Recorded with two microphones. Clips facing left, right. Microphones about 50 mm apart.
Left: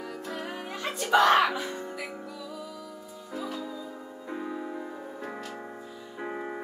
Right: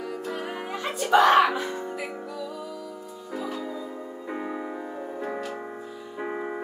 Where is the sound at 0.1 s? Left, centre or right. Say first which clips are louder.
Right 4 dB; centre.